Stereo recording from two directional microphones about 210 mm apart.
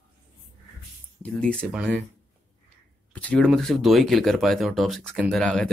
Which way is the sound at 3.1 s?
5° left (ahead or behind).